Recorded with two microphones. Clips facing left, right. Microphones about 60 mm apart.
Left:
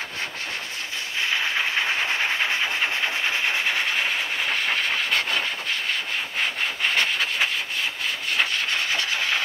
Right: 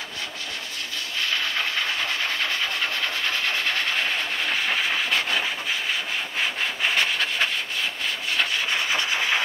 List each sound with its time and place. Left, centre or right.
1.2 s train: left
4.6 s train: centre
6.8 s rub: centre